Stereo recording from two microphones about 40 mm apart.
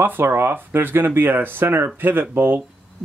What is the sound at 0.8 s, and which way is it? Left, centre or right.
Speech, right.